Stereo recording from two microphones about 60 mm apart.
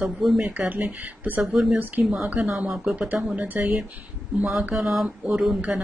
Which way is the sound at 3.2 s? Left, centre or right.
Right.